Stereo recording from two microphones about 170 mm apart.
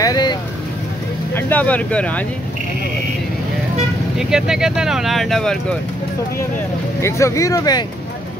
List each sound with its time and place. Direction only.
0.0 s vehicle: 25° left (ahead or behind)
1.3 s speech: 10° left (ahead or behind)
4.2 s speech: 5° right (ahead or behind)
7.0 s speech: 15° left (ahead or behind)